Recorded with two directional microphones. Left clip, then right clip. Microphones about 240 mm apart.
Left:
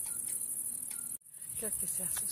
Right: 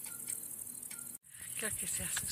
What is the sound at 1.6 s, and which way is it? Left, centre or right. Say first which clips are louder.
Speech: right 2 dB; centre.